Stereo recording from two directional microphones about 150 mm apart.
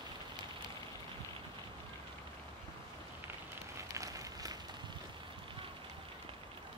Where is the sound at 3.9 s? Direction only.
25° right (ahead or behind).